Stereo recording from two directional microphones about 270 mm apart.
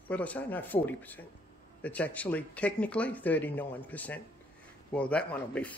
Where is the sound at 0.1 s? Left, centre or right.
Centre.